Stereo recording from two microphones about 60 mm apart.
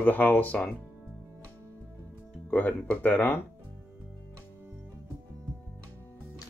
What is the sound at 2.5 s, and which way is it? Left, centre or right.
Speech, left.